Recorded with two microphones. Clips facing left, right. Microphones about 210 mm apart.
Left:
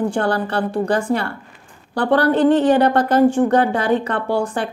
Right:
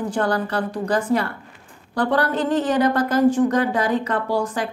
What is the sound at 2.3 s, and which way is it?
Speech, 65° left (ahead or behind).